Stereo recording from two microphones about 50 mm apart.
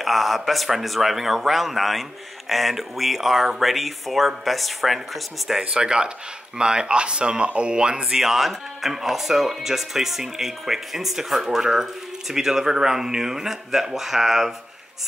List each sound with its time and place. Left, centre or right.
0.0 s speech: centre
5.6 s speech: centre